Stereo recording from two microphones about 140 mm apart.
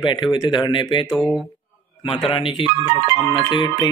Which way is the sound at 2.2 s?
40° left (ahead or behind).